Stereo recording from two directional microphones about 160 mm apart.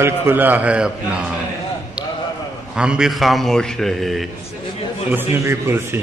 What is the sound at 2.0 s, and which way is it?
Clip-clop, 5° right (ahead or behind).